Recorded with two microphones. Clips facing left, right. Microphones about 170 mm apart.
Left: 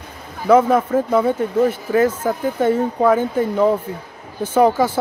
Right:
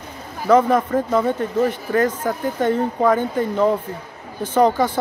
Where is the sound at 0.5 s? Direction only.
5° left (ahead or behind).